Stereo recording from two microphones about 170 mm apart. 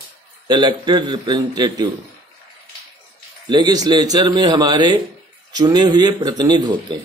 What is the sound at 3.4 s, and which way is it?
A man's voice, 25° right (ahead or behind).